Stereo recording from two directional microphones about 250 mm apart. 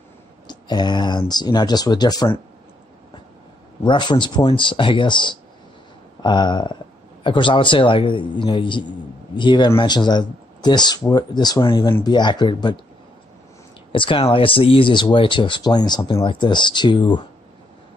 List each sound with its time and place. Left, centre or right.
0.5 s speech: centre
3.8 s speech: centre
13.9 s speech: left